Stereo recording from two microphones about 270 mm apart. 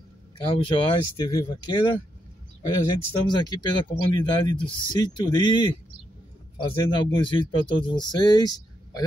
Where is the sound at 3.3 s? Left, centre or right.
Centre.